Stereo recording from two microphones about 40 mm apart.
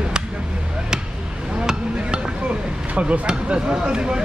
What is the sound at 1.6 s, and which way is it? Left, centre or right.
Hammer, right.